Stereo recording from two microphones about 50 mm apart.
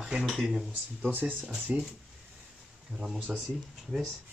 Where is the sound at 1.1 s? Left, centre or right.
Right.